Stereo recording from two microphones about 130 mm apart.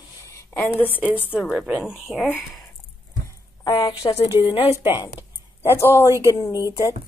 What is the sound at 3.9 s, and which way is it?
Speech, 40° left (ahead or behind).